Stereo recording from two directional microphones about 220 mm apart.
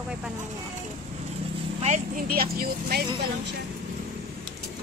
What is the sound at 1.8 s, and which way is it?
Speech, 35° right (ahead or behind).